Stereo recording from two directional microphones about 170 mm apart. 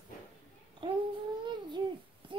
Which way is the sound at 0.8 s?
25° right (ahead or behind).